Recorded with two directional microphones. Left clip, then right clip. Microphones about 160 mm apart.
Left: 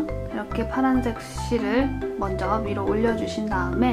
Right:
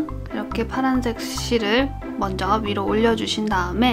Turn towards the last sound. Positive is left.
turn(degrees=-30)  # may be behind; listen again after turning